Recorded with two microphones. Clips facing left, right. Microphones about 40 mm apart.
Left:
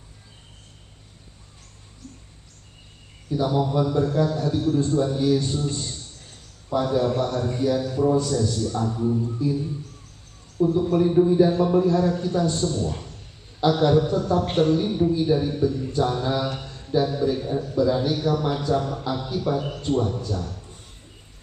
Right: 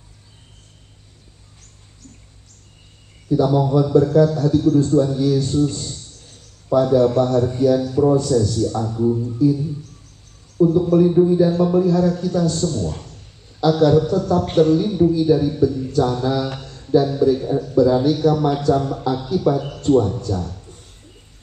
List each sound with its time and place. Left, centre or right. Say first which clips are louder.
3.3 s a man's voice: right 6 dB; centre
8.9 s speech: right 5 dB; centre
9.2 s a man's voice: right 7 dB; centre
10.7 s a man's voice: right 4 dB; centre